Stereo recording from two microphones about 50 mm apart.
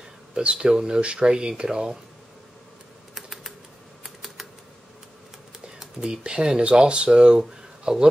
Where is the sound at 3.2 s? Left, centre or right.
Centre.